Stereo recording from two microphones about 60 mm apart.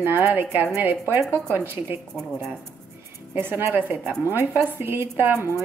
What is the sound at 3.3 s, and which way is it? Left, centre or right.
A woman's voice, right.